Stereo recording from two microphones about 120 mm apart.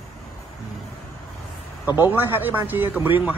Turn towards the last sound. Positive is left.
turn(degrees=-15)  # may be behind; listen again after turning